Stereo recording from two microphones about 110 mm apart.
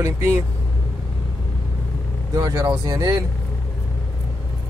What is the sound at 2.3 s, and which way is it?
Speech, 35° right (ahead or behind).